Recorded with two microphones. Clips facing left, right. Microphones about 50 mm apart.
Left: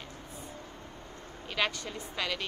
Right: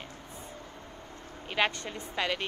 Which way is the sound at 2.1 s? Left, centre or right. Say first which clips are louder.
Right 4 dB; right.